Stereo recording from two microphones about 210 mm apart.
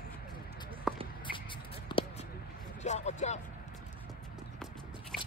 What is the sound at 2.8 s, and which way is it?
Speech, 35° left (ahead or behind).